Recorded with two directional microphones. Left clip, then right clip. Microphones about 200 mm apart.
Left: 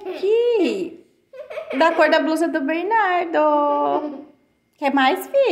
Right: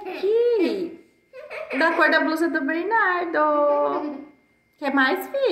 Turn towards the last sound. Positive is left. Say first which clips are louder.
# left 4 dB
turn(degrees=40)  # may be behind; listen again after turning